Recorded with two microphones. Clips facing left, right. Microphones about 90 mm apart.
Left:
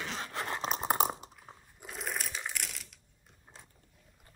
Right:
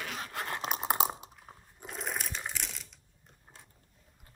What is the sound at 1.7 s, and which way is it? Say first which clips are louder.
Crunch: right 1 dB; centre (ahead or behind).